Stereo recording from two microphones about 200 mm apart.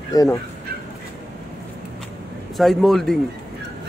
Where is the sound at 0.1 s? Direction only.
15° left (ahead or behind).